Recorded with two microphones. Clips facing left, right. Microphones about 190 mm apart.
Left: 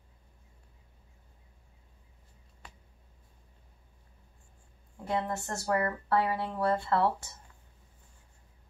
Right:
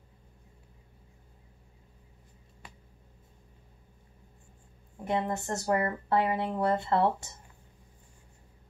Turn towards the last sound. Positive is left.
turn(degrees=-20)  # may be behind; listen again after turning